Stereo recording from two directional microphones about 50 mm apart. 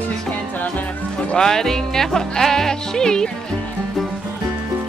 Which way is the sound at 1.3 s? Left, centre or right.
Centre.